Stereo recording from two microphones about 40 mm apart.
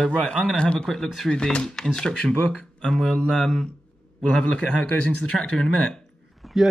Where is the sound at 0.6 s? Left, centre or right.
Left.